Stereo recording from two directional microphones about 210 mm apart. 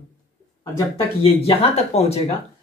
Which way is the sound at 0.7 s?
30° left (ahead or behind).